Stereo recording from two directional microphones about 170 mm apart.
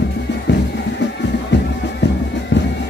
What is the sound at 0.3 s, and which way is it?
Music, 90° left.